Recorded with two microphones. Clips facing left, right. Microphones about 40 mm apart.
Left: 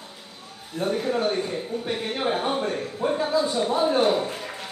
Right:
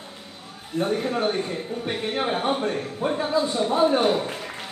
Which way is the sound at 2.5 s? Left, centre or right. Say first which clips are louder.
Right 1 dB; centre.